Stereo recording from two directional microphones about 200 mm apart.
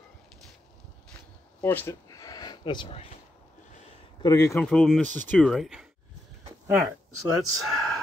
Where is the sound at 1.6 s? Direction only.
10° left (ahead or behind); by 3.1 s 30° left (ahead or behind).